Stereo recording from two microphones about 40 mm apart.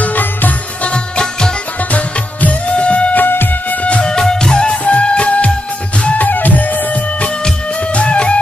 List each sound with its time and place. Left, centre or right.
0.0 s music: left
0.8 s music: left
1.8 s music: left
3.2 s music: left
3.7 s music: left
4.1 s music: centre
6.1 s music: left